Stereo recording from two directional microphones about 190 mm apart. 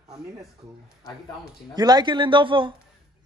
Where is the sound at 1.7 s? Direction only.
20° right (ahead or behind).